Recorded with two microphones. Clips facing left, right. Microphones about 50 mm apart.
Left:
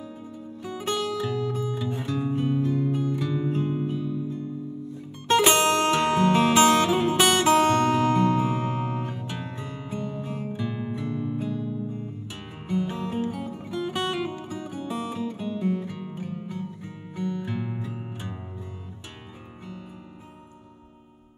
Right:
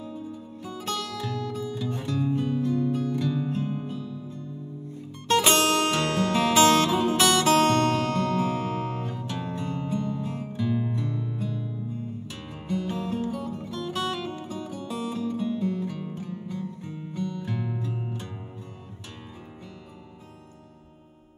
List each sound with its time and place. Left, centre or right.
0.8 s music: left
5.5 s music: centre